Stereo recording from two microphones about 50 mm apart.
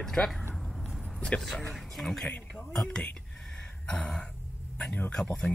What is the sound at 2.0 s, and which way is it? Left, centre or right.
Speech, centre.